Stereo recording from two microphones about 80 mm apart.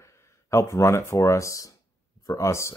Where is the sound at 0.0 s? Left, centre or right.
Left.